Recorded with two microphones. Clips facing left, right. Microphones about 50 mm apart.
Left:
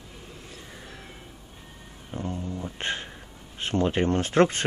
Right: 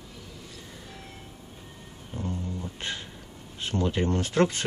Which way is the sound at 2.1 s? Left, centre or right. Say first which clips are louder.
Left 2 dB; left.